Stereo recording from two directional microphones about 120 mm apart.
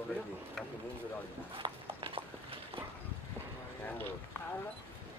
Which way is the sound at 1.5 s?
45° right (ahead or behind).